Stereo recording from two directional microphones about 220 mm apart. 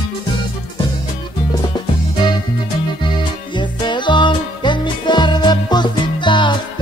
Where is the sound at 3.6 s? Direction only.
20° left (ahead or behind).